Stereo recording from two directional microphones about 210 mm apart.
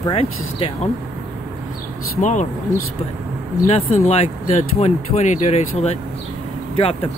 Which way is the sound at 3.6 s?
35° left (ahead or behind).